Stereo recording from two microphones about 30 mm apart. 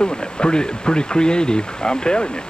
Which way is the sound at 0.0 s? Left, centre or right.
Left.